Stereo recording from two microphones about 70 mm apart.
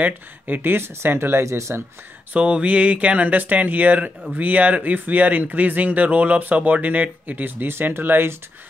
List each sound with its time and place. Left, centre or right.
0.0 s speech: right
2.3 s speech: centre